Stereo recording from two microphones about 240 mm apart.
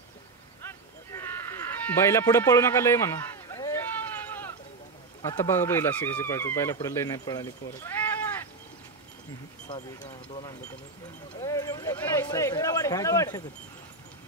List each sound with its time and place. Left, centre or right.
0.7 s a sound: centre
5.2 s speech: centre
9.7 s speech: left